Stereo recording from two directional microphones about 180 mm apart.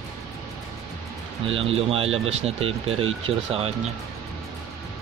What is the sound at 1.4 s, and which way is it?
Speech, 30° right (ahead or behind).